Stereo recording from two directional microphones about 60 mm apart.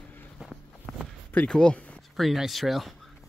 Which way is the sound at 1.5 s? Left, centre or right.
Centre.